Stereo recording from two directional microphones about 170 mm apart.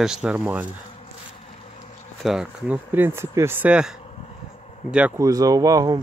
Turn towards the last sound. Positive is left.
turn(degrees=-20)  # may be behind; listen again after turning